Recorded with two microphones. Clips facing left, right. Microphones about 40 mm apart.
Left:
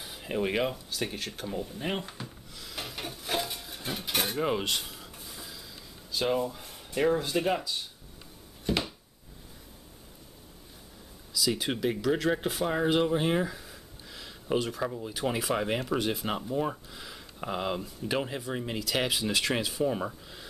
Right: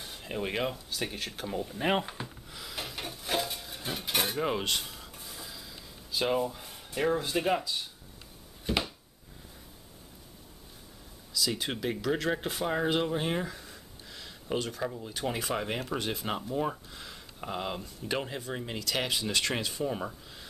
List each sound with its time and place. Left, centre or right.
0.0 s speech: centre
1.9 s speech: centre
2.2 s a sound: centre
6.1 s speech: centre
8.7 s a sound: centre
11.3 s speech: centre